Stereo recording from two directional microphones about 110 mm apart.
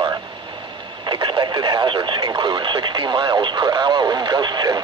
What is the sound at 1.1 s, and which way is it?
Speech, 40° right (ahead or behind).